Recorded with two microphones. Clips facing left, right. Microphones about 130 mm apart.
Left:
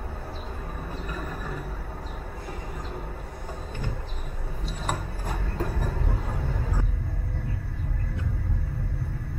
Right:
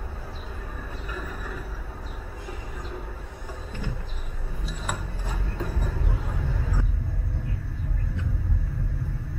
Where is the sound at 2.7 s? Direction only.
5° left (ahead or behind).